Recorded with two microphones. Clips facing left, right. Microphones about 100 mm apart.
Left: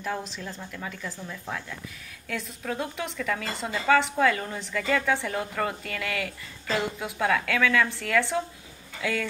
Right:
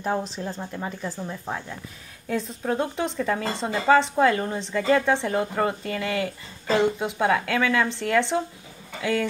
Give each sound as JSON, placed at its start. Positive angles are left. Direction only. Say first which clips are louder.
{"t": 0.0, "sound": "a woman's voice", "louder": "right 6 dB", "side_deg": -35}